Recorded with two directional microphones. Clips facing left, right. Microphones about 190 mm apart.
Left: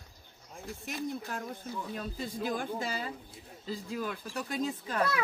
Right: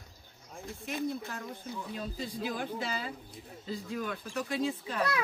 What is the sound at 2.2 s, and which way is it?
Speech, 50° left (ahead or behind).